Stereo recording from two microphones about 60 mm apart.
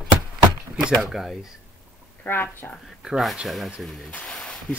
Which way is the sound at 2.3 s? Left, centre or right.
Left.